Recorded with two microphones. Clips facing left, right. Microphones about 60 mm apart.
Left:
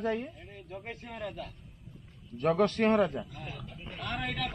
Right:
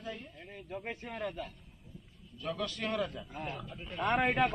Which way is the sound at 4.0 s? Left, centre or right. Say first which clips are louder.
Right 7 dB; right.